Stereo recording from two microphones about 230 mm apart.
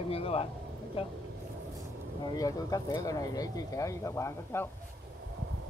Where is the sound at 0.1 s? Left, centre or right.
Left.